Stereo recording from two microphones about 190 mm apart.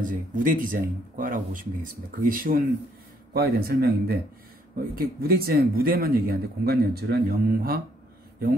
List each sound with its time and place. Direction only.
0.0 s speech: 45° right (ahead or behind)